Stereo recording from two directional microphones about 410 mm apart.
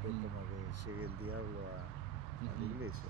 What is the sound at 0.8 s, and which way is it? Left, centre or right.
Speech, right.